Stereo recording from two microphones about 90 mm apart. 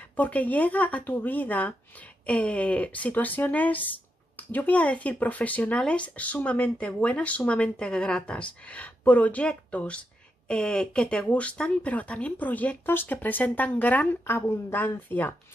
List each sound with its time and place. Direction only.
0.1 s speech: 20° left (ahead or behind)